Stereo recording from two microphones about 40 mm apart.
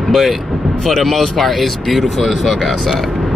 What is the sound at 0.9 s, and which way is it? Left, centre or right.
Speech, centre.